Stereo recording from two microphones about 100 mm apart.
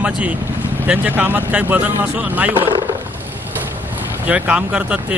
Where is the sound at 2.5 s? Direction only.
60° right (ahead or behind).